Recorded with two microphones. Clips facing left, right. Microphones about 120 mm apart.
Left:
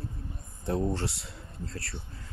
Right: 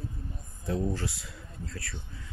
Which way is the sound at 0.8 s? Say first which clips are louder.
Left 2 dB; 30° left (ahead or behind).